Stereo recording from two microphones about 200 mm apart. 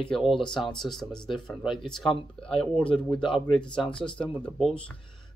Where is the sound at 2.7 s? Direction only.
25° left (ahead or behind).